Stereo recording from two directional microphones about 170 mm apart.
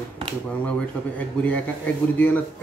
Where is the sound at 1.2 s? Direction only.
10° left (ahead or behind).